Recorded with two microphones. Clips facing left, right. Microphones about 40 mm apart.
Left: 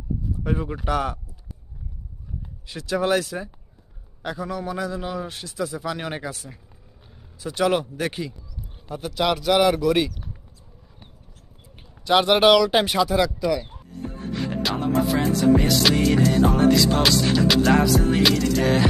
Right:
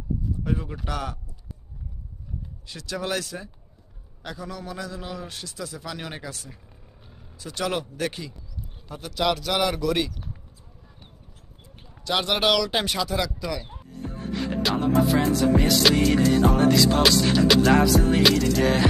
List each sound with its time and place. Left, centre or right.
0.4 s a man's voice: left
2.7 s a man's voice: centre
12.0 s speech: centre
13.7 s music: centre